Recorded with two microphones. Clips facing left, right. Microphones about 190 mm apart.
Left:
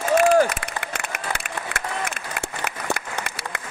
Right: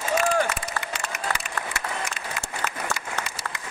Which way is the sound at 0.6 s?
60° left (ahead or behind).